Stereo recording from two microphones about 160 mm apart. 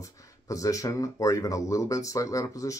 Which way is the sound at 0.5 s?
20° left (ahead or behind).